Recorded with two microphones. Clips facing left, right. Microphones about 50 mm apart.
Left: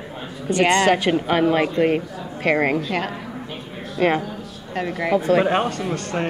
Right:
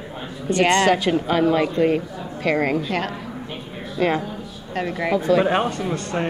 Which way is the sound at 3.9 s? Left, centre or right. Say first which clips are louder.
Left 2 dB; left.